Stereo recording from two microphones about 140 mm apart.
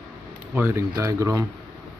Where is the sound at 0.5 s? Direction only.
15° right (ahead or behind).